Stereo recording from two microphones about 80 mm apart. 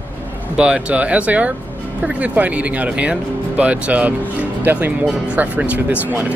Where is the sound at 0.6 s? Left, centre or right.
Centre.